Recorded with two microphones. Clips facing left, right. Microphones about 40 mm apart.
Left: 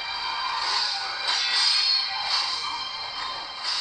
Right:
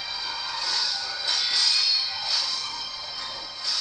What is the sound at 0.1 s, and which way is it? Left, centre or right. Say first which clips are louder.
Music: left 6 dB; left.